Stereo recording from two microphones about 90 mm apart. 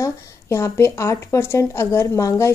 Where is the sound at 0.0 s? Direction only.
35° left (ahead or behind).